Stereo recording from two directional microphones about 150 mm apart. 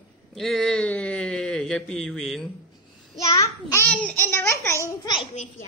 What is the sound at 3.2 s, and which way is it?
A child's voice, 20° left (ahead or behind).